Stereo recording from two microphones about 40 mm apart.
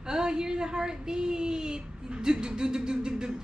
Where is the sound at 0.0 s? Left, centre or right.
Centre.